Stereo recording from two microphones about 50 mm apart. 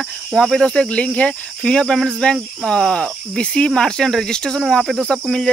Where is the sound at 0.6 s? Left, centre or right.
Centre.